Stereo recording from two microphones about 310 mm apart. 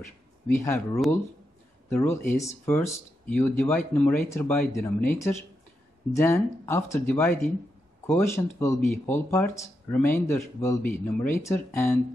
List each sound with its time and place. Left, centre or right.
0.6 s speech: centre